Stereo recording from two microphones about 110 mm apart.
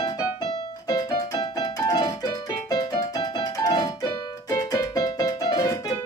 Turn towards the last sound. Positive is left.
turn(degrees=35)  # may be behind; listen again after turning